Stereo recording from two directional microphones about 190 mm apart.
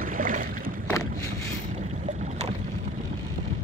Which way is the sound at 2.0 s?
40° right (ahead or behind).